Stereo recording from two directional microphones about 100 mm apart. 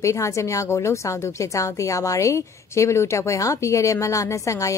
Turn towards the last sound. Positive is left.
turn(degrees=30)  # may be behind; listen again after turning